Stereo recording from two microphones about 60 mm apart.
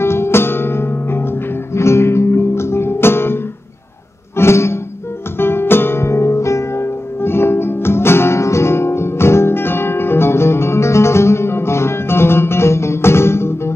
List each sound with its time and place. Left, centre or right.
0.0 s music: left
4.4 s music: left